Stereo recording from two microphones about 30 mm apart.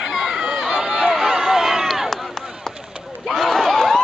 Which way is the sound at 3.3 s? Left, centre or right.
Centre.